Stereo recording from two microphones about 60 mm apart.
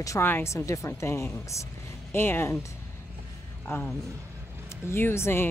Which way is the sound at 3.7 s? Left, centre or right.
Left.